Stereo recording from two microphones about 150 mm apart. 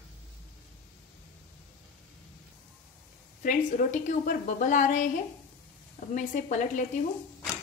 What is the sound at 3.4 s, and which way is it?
A woman's voice, 60° left (ahead or behind).